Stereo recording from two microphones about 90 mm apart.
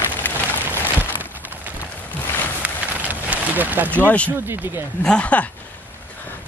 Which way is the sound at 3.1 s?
20° right (ahead or behind).